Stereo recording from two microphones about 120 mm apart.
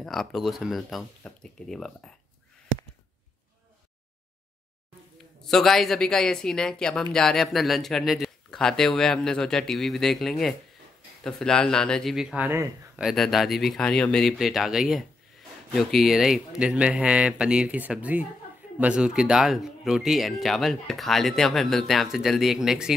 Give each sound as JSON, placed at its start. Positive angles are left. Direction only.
{"t": 0.0, "sound": "speech", "side_deg": 0}
{"t": 5.4, "sound": "speech", "side_deg": 5}
{"t": 12.4, "sound": "speech", "side_deg": -25}
{"t": 12.9, "sound": "speech", "side_deg": 0}